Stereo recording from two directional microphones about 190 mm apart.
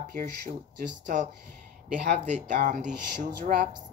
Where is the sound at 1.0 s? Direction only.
40° right (ahead or behind).